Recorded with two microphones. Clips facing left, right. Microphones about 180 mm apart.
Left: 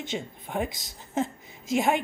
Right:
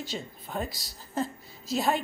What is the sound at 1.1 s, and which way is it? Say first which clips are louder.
Speech: left 3 dB; 20° left (ahead or behind).